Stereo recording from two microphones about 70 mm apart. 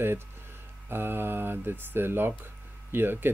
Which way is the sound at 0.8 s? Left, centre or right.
Right.